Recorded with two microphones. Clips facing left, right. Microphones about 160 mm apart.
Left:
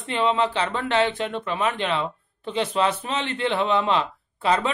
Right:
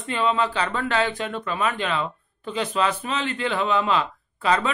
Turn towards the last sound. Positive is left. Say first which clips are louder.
# even
turn(degrees=25)  # may be behind; listen again after turning